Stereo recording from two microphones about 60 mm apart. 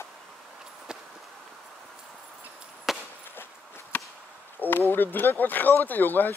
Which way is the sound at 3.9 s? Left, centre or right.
Left.